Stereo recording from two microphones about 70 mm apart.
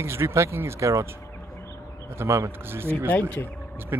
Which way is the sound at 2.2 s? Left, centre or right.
Right.